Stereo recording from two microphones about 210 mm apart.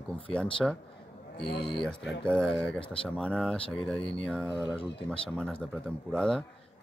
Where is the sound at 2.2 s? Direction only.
5° left (ahead or behind).